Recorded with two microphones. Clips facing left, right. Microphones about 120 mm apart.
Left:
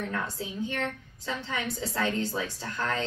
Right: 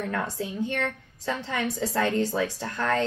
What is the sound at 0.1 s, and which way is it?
Speech, 60° right (ahead or behind).